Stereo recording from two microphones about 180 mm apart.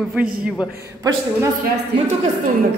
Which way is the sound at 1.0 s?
20° right (ahead or behind).